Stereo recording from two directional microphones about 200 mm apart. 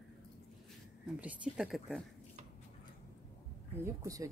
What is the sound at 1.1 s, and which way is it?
Speech, 5° right (ahead or behind).